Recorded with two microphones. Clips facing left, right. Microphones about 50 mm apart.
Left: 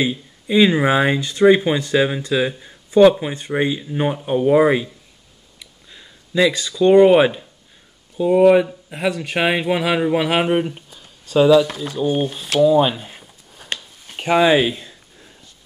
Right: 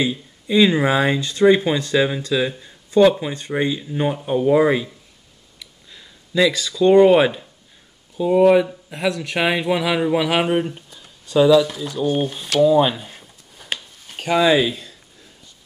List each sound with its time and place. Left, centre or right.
0.0 s speech: centre
5.6 s a sound: centre
8.2 s speech: centre